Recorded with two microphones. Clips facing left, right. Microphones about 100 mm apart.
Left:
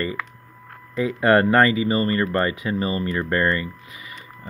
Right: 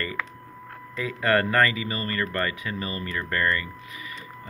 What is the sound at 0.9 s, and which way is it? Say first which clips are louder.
Speech: left 6 dB; 25° left (ahead or behind).